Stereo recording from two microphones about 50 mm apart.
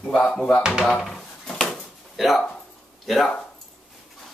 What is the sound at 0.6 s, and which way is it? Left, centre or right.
Speech, centre.